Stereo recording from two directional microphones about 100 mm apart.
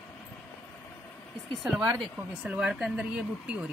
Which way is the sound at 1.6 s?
5° right (ahead or behind).